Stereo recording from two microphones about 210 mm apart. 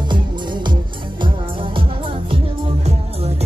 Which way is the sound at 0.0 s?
20° right (ahead or behind).